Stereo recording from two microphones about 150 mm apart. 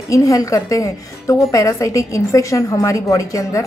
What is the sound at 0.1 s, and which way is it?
A woman's voice, 20° left (ahead or behind).